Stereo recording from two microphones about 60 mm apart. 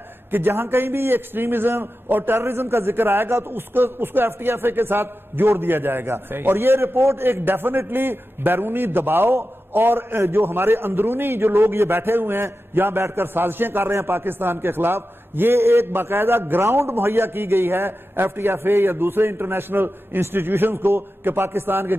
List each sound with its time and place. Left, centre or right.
0.3 s a man's voice: right